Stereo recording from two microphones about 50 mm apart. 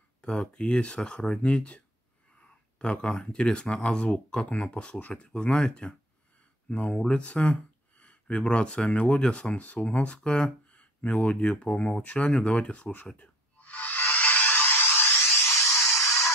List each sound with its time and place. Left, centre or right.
0.2 s speech: centre
13.0 s music: left
15.4 s a sound: left